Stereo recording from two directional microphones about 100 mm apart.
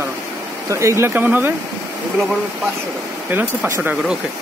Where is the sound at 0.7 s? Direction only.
30° right (ahead or behind).